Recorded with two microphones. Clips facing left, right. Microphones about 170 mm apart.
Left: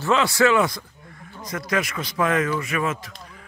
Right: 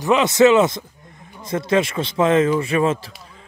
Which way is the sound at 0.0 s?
20° right (ahead or behind).